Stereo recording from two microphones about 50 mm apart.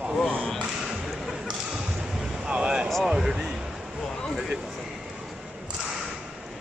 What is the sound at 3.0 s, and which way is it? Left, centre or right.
Speech, centre.